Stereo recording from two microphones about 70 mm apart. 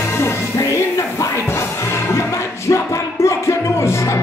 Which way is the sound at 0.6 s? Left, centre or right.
Left.